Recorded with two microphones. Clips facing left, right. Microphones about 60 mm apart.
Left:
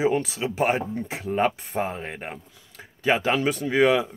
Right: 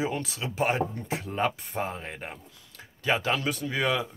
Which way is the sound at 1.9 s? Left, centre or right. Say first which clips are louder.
Left 4 dB; centre.